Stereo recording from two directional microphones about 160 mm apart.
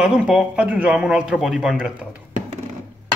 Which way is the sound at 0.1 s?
5° right (ahead or behind).